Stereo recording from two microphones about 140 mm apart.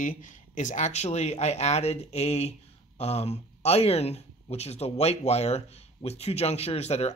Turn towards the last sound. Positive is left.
turn(degrees=50)  # may be behind; listen again after turning